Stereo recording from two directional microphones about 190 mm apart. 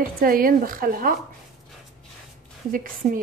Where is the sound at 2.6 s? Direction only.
45° right (ahead or behind).